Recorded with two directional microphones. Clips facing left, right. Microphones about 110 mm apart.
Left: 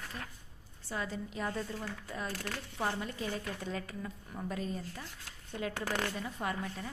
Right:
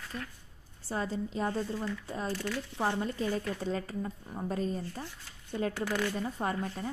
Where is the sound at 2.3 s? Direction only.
45° left (ahead or behind).